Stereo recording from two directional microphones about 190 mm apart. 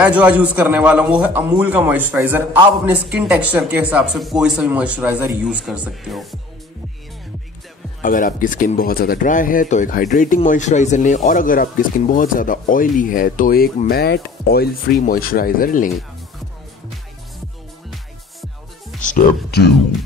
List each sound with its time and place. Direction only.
0.0 s a man's voice: 5° right (ahead or behind)
8.0 s speech: 45° left (ahead or behind)
17.9 s music: centre (ahead or behind)